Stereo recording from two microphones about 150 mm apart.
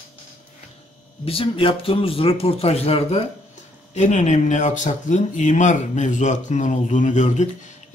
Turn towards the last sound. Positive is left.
turn(degrees=55)  # may be behind; listen again after turning